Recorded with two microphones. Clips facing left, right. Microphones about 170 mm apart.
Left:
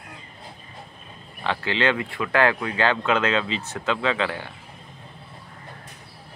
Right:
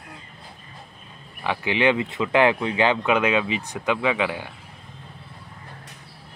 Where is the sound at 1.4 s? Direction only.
15° right (ahead or behind).